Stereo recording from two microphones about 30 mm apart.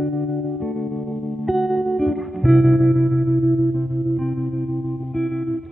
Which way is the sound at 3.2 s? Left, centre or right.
Right.